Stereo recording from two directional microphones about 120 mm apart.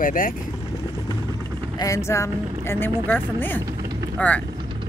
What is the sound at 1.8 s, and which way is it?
Speech, 25° left (ahead or behind).